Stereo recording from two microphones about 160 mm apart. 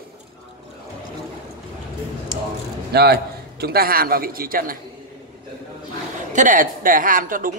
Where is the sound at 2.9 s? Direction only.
90° right; by 4.8 s 65° right (ahead or behind).